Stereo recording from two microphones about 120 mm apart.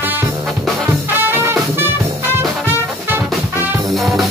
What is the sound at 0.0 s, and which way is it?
Music, 15° right (ahead or behind).